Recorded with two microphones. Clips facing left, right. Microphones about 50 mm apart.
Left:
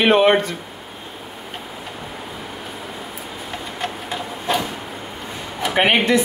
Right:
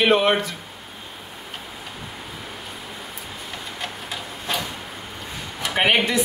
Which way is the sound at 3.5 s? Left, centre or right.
Centre.